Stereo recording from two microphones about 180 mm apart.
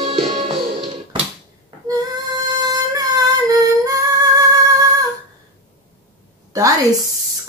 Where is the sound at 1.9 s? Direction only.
20° right (ahead or behind).